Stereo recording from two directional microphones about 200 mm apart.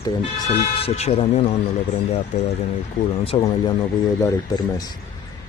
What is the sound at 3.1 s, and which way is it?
Speech, 30° left (ahead or behind).